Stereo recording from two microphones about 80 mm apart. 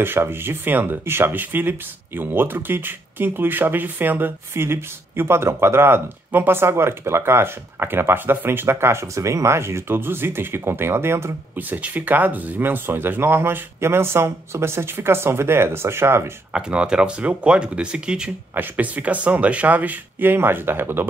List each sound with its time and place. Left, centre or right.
0.0 s speech: right
11.5 s speech: right
16.5 s speech: centre
18.5 s speech: right